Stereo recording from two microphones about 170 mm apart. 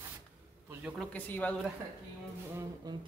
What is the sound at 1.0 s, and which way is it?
Speech, 10° left (ahead or behind).